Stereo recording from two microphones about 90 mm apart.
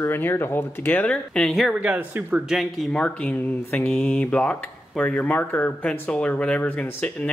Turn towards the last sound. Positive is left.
turn(degrees=15)  # may be behind; listen again after turning